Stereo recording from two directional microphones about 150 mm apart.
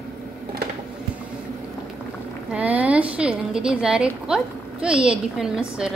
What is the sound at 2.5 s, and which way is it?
A woman's voice, 10° right (ahead or behind).